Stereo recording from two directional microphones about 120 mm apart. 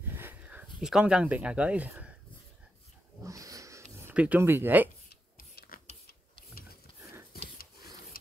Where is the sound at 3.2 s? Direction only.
25° right (ahead or behind).